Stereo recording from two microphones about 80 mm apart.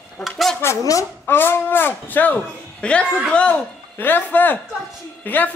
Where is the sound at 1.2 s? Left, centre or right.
Left.